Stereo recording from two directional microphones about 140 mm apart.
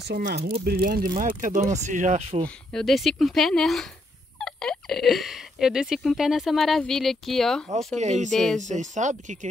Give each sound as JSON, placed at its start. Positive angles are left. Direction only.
{"t": 0.1, "sound": "speech", "side_deg": -90}
{"t": 0.4, "sound": "speech", "side_deg": -50}
{"t": 0.7, "sound": "speech", "side_deg": -90}
{"t": 2.4, "sound": "speech", "side_deg": 5}
{"t": 8.0, "sound": "speech", "side_deg": -55}
{"t": 8.3, "sound": "speech", "side_deg": 5}
{"t": 8.5, "sound": "speech", "side_deg": -60}